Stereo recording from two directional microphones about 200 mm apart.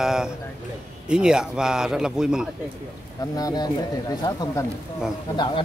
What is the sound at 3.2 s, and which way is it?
Speech, 20° left (ahead or behind).